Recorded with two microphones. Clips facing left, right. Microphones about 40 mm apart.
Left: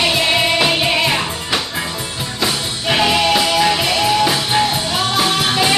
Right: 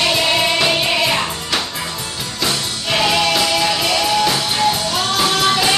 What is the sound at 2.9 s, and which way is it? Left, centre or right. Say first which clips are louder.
Music: left 1 dB; centre.